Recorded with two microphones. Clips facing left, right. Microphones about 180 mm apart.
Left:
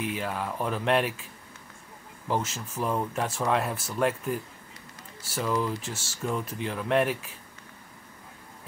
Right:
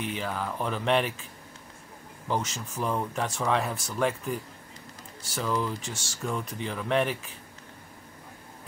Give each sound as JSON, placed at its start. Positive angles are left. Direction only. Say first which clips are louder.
{"t": 0.0, "sound": "speech", "louder": "left 1 dB", "side_deg": 0}
{"t": 2.2, "sound": "speech", "louder": "left 1 dB", "side_deg": 0}